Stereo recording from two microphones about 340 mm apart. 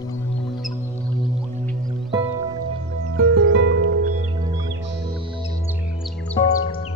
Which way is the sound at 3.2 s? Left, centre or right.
Right.